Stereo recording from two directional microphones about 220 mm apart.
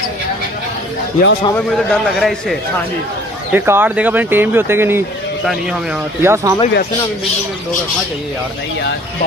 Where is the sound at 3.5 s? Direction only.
10° right (ahead or behind).